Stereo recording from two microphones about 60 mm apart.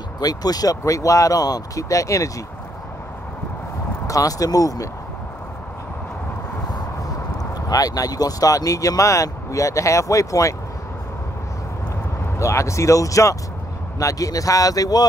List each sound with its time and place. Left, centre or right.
0.2 s speech: left
4.1 s speech: left
7.6 s speech: left
12.4 s speech: left